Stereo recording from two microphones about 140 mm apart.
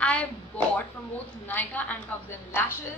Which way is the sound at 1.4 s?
10° left (ahead or behind).